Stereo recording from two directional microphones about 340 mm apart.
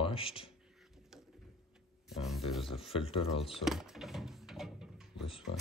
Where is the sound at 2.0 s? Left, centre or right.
Centre.